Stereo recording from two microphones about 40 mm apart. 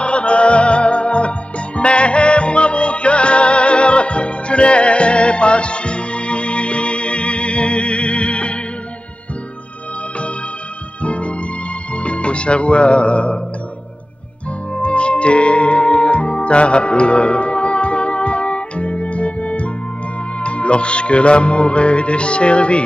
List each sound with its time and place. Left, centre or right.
0.0 s music: left
11.0 s music: left
14.8 s music: left